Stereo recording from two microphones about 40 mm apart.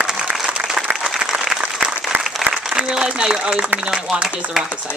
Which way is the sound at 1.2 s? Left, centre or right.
Centre.